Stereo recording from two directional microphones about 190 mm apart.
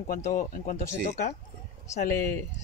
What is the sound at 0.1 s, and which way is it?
Speech, 45° left (ahead or behind).